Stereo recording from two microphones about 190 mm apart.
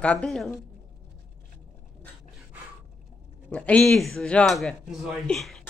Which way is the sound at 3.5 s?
5° left (ahead or behind).